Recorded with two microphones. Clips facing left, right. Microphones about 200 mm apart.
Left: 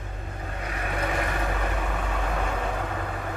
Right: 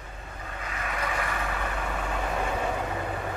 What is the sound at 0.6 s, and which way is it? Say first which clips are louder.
Vehicle: left 3 dB; 45° left (ahead or behind).